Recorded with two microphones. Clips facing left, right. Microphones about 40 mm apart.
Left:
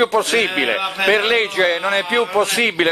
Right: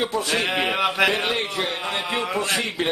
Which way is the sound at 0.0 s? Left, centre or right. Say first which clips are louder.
Left 7 dB; left.